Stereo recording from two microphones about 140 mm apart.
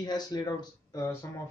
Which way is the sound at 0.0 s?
30° left (ahead or behind).